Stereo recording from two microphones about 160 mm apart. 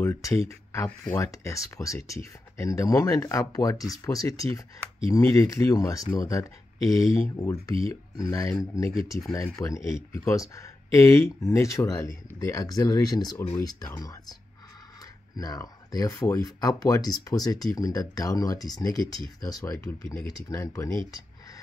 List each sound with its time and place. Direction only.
0.0 s speech: 20° left (ahead or behind)
15.3 s speech: 20° left (ahead or behind)